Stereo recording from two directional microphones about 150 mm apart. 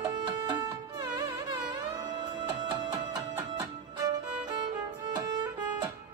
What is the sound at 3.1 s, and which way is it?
Music, 25° right (ahead or behind).